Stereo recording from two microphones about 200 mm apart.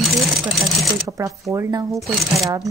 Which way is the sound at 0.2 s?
Centre (ahead or behind).